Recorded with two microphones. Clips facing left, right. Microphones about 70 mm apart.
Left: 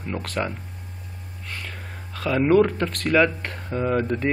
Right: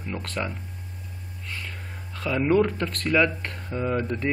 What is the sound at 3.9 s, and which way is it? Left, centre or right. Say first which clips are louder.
Speech: left 4 dB; centre.